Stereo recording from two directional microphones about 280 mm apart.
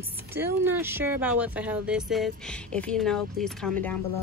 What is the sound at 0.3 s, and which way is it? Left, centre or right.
Speech, centre.